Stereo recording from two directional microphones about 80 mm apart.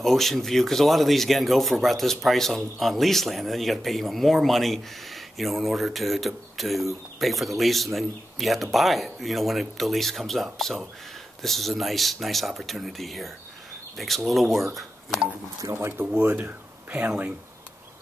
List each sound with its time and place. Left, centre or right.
0.0 s a man's voice: centre
14.8 s a sound: centre
15.7 s speech: right